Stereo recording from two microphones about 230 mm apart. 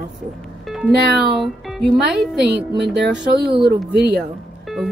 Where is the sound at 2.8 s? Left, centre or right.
Right.